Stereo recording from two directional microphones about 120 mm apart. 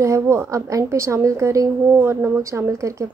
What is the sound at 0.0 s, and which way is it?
A woman's voice, 25° right (ahead or behind).